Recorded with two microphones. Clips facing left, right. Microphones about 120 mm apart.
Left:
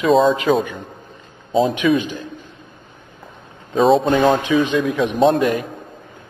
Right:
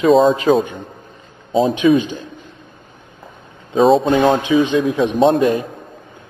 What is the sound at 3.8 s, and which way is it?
Speech, centre (ahead or behind).